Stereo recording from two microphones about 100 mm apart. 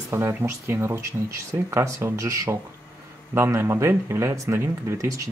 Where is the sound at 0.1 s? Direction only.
25° right (ahead or behind).